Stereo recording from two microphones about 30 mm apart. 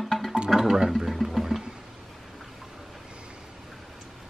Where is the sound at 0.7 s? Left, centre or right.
Centre.